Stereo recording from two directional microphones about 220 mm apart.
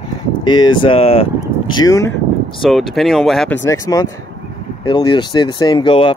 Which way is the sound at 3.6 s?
15° left (ahead or behind).